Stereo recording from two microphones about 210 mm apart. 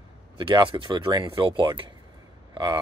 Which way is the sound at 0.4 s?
20° right (ahead or behind).